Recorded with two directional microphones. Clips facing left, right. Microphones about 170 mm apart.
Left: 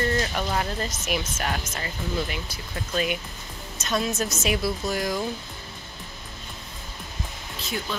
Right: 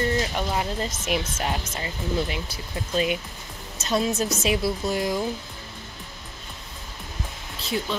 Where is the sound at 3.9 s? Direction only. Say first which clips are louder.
Right 3 dB; 35° right (ahead or behind).